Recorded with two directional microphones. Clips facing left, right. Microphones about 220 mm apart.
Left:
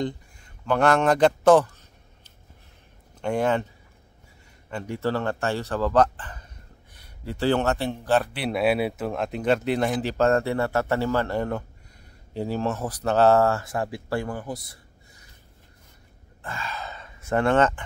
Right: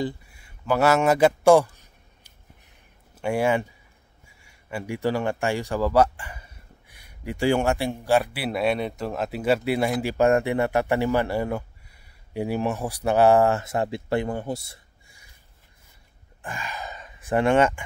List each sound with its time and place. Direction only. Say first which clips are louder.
0.0 s a sound: even; 5° right (ahead or behind)
3.2 s speech: right 1 dB; 10° right (ahead or behind); by 14.8 s 25° right (ahead or behind)
16.4 s speech: even; 15° right (ahead or behind)